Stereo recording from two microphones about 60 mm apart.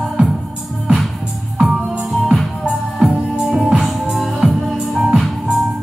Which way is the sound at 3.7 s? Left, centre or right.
Centre.